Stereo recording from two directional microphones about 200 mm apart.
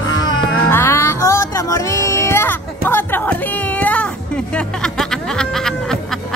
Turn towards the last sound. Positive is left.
turn(degrees=0)  # may be behind; listen again after turning